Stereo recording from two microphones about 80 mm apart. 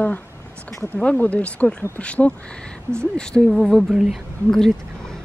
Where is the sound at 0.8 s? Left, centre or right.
Centre.